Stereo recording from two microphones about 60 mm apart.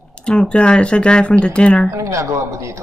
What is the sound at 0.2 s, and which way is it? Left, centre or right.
Speech, centre.